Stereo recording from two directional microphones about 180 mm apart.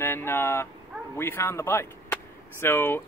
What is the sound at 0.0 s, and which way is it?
Speech, 10° left (ahead or behind).